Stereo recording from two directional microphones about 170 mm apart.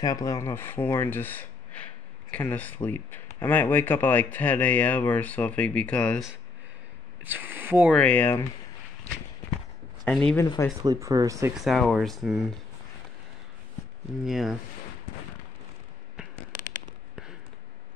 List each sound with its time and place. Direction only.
0.0 s speech: 20° left (ahead or behind); by 6.3 s 5° left (ahead or behind)
7.2 s speech: 10° right (ahead or behind)
8.0 s speech: 10° left (ahead or behind)
10.0 s speech: 5° left (ahead or behind)
10.4 s speech: 20° left (ahead or behind)
10.8 s speech: 20° right (ahead or behind)
11.5 s speech: centre (ahead or behind)
14.2 s speech: centre (ahead or behind)